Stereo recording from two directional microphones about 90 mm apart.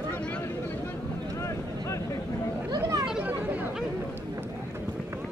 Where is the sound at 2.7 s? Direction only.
45° right (ahead or behind).